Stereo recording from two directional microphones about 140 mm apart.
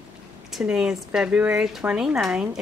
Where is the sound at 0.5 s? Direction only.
5° right (ahead or behind).